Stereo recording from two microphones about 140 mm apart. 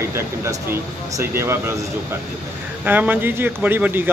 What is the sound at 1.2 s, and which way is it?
Speech, 15° right (ahead or behind).